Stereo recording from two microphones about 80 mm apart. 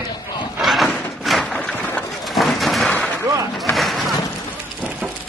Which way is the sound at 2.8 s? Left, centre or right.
Centre.